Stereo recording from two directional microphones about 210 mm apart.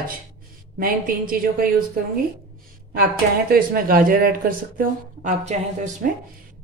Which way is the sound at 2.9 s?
45° right (ahead or behind).